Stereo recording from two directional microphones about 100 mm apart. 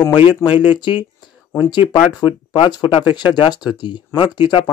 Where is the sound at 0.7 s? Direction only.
50° left (ahead or behind).